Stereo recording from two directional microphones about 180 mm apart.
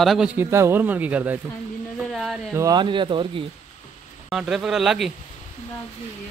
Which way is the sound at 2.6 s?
20° right (ahead or behind).